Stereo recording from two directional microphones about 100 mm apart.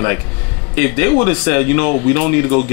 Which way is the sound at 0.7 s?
15° left (ahead or behind).